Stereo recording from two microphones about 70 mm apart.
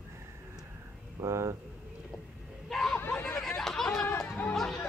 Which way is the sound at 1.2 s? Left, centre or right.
Right.